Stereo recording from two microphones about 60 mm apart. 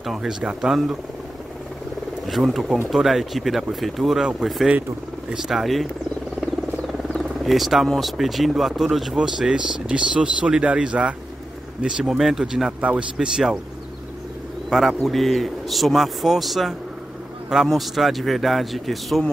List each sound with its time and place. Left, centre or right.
0.0 s speech: centre
2.2 s a man's voice: centre
7.1 s a sound: centre
8.0 s speech: centre
12.0 s a man's voice: centre
12.8 s a man's voice: centre
14.7 s a man's voice: centre